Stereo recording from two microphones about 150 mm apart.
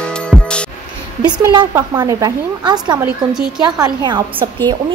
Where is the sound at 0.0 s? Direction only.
5° left (ahead or behind).